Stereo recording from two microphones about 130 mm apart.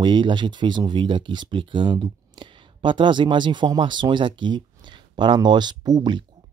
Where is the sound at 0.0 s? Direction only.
35° right (ahead or behind).